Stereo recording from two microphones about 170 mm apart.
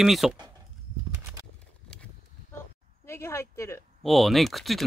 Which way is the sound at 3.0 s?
15° left (ahead or behind).